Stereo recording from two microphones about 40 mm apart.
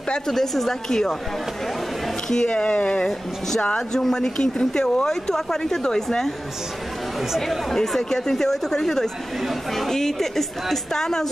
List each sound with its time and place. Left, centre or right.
0.3 s speech: centre
2.2 s speech: centre
3.9 s speech: centre
7.3 s speech: centre